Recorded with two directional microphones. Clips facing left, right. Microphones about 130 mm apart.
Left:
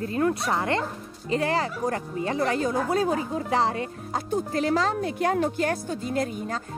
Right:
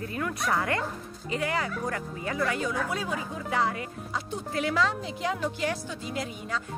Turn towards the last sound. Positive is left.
turn(degrees=45)  # may be behind; listen again after turning